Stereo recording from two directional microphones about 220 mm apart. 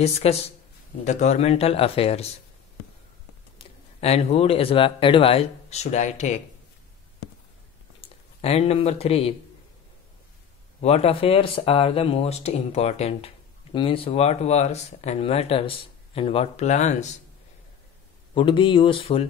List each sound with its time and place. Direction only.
0.0 s speech: 30° left (ahead or behind)
3.5 s speech: 30° left (ahead or behind)
8.0 s speech: 25° left (ahead or behind)
10.8 s speech: 30° left (ahead or behind)
18.3 s speech: 20° left (ahead or behind)